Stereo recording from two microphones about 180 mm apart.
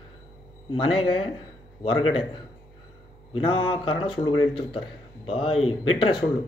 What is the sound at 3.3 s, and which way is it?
A man's voice, 30° left (ahead or behind).